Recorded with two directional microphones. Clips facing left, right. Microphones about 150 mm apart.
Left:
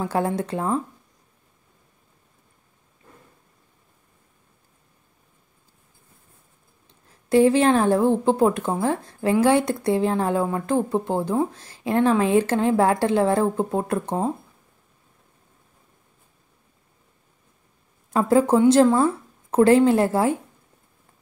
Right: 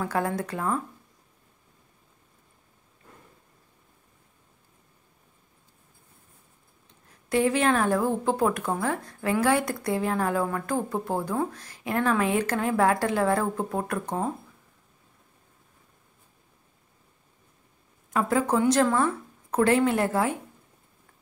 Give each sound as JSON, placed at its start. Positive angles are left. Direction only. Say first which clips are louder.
{"t": 0.0, "sound": "a woman's voice", "louder": "left 4 dB", "side_deg": 25}
{"t": 7.2, "sound": "a woman's voice", "louder": "left 6 dB", "side_deg": 30}
{"t": 18.1, "sound": "a woman's voice", "louder": "left 6 dB", "side_deg": 30}